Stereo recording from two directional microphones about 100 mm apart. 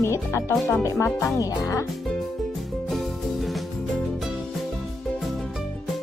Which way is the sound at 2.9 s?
Centre (ahead or behind).